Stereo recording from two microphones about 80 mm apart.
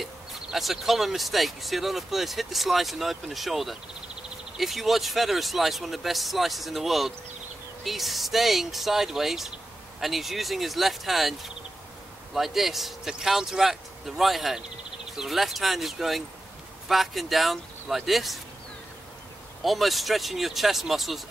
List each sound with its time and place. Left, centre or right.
0.0 s speech: centre
19.6 s speech: centre